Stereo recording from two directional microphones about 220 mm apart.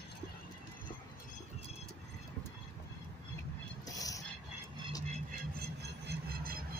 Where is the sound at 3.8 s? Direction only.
15° left (ahead or behind).